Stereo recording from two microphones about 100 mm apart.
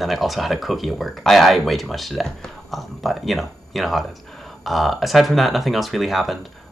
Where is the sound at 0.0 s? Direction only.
Centre (ahead or behind).